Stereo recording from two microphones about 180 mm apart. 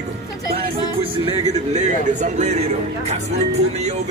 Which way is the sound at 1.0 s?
35° right (ahead or behind).